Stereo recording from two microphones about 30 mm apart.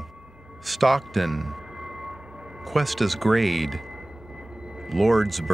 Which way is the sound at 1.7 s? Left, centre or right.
Right.